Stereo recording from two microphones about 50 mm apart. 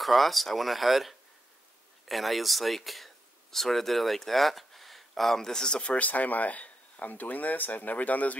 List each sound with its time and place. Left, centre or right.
0.0 s speech: centre; by 8.4 s left